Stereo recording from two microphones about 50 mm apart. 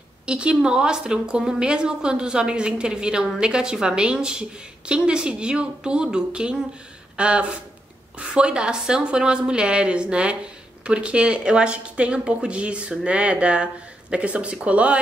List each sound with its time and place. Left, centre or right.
0.3 s a woman's voice: right